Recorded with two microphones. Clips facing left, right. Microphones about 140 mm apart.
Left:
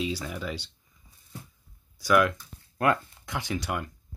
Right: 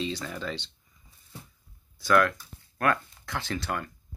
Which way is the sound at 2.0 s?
15° left (ahead or behind).